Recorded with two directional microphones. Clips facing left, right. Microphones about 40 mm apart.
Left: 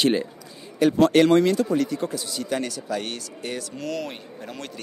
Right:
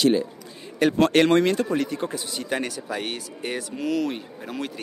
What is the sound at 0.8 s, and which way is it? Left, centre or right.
Speech, right.